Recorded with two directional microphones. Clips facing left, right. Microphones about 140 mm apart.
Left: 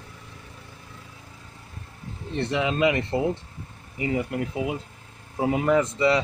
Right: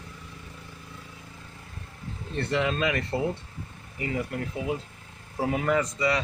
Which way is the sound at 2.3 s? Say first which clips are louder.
Left 2 dB; 15° left (ahead or behind).